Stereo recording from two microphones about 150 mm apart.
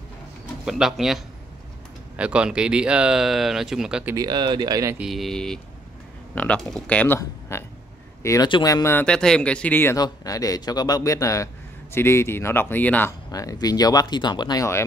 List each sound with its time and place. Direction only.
0.7 s speech: 5° right (ahead or behind)
4.1 s speech: 25° right (ahead or behind)
4.9 s speech: centre (ahead or behind)
7.2 s speech: 20° left (ahead or behind)
9.0 s speech: 5° left (ahead or behind)
9.9 s speech: 25° left (ahead or behind)
13.3 s speech: 25° left (ahead or behind)